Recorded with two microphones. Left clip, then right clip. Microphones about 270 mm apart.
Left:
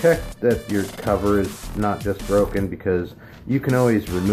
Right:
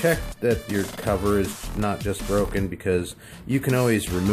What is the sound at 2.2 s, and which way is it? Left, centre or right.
Speech, centre.